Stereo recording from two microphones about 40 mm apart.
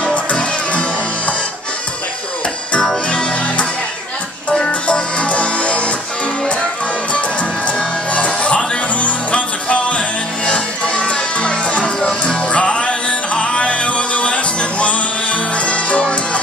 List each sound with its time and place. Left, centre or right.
0.0 s music: left
3.1 s music: left
4.5 s music: left
7.1 s music: left
12.1 s music: centre
12.4 s music: left